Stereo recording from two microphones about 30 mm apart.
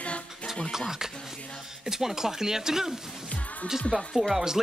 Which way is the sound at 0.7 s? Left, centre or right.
Centre.